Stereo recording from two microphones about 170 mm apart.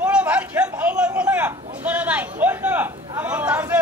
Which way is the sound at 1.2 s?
10° right (ahead or behind).